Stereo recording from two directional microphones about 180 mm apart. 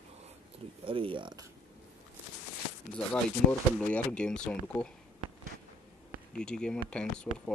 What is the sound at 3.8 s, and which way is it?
Speech, 10° left (ahead or behind).